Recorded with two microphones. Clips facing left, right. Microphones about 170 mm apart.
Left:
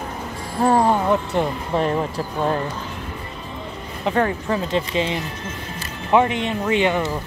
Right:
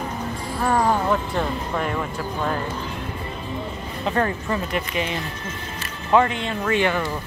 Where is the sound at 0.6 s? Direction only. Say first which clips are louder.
Left 4 dB; 30° left (ahead or behind).